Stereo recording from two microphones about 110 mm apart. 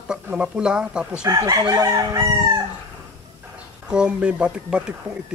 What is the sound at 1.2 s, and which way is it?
Crowing, 35° right (ahead or behind).